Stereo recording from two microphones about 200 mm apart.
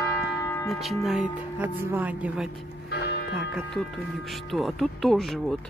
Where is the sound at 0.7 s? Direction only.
Centre (ahead or behind).